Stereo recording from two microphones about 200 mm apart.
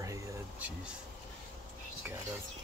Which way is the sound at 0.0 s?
10° right (ahead or behind).